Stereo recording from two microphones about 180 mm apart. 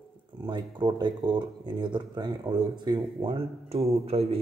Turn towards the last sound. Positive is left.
turn(degrees=-35)  # may be behind; listen again after turning